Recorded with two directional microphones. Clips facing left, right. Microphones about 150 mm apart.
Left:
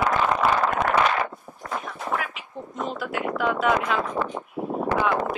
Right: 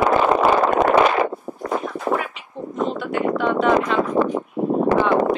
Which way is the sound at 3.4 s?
5° left (ahead or behind).